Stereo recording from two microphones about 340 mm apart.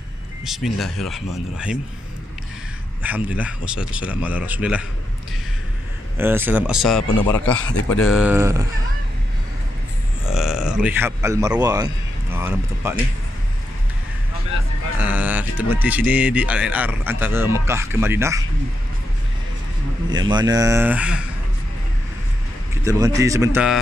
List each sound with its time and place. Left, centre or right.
0.5 s speech: centre
3.0 s speech: centre
6.1 s speech: centre
7.7 s speech: left
8.1 s speech: centre
10.2 s speech: centre
15.0 s speech: centre
20.1 s speech: centre
22.8 s speech: centre